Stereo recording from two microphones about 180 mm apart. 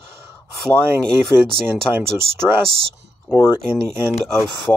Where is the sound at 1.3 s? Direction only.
20° left (ahead or behind).